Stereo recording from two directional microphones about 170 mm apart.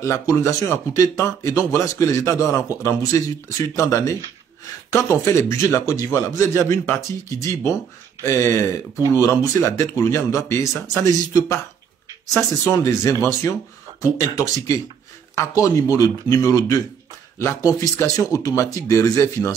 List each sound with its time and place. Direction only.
0.0 s a man's voice: 20° left (ahead or behind)